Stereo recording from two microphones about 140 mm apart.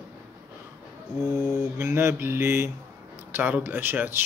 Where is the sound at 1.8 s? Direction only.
20° right (ahead or behind).